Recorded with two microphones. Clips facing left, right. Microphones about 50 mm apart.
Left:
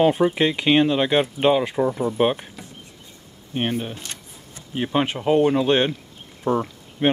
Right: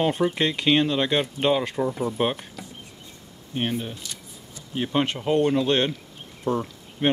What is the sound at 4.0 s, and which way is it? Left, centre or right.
Camera, left.